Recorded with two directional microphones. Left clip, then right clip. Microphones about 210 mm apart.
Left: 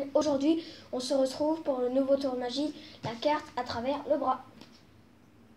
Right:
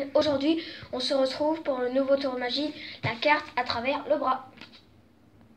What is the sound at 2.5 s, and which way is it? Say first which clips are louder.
A woman's voice: right 4 dB; 20° left (ahead or behind).